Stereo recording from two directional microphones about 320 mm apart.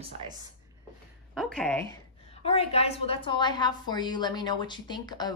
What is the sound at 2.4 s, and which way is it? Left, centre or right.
A woman's voice, centre.